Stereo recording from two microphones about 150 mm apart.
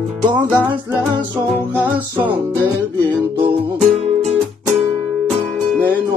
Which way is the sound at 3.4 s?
45° right (ahead or behind).